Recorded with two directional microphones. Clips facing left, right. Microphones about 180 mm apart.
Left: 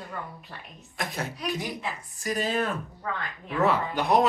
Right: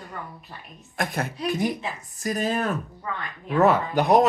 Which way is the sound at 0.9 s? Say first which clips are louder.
Right 5 dB; 55° right (ahead or behind).